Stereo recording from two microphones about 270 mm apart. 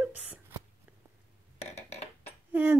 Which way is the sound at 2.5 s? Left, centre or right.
Centre.